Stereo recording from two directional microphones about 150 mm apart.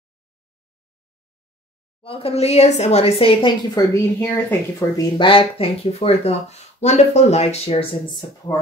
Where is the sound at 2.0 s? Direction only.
40° left (ahead or behind).